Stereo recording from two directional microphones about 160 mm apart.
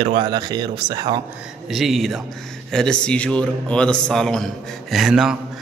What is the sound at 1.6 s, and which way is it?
A man's voice, centre (ahead or behind).